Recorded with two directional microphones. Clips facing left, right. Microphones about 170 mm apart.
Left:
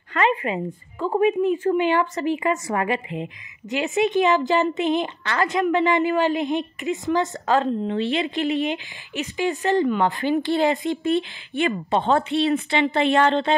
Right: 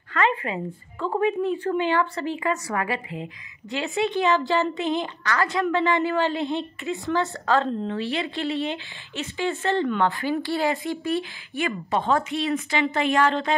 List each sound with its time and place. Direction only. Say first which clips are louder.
0.1 s a woman's voice: left 2 dB; 20° left (ahead or behind)